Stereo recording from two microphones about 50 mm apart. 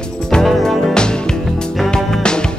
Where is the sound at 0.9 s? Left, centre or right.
Centre.